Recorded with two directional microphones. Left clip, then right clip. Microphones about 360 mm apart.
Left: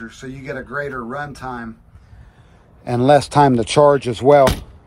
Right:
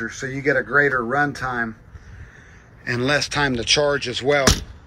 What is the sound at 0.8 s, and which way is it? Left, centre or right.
Speech, left.